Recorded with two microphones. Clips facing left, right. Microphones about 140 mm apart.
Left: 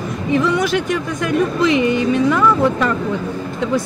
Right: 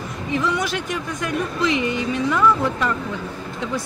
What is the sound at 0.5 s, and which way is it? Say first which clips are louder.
Speech: left 7 dB; 65° left (ahead or behind).